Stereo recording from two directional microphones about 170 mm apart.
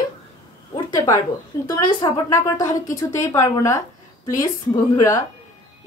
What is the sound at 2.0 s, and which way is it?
Speech, 20° left (ahead or behind).